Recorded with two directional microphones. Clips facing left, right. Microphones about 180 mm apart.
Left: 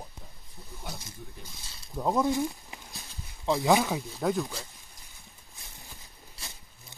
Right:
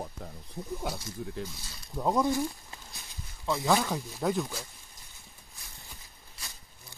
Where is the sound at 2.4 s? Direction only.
15° left (ahead or behind).